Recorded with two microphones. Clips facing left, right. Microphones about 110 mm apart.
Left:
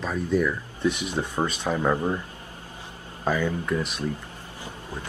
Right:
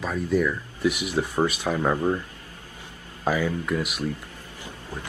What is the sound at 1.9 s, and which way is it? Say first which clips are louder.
Speech: right 1 dB; 20° left (ahead or behind).